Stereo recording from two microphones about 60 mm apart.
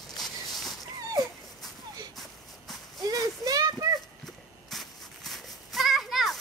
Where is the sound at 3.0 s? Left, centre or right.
Right.